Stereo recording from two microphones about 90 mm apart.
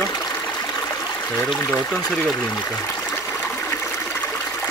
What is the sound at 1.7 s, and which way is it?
Speech, 15° left (ahead or behind).